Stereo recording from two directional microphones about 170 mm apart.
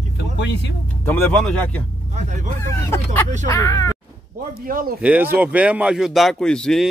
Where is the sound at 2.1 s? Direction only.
45° right (ahead or behind).